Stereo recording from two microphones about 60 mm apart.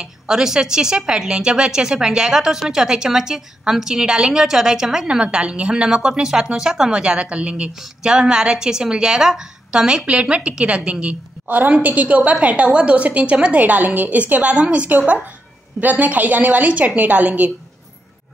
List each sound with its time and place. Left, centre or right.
0.0 s a woman's voice: centre; by 17.5 s right